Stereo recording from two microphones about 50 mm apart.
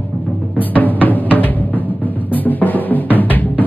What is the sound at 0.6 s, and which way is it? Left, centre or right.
Drum, left.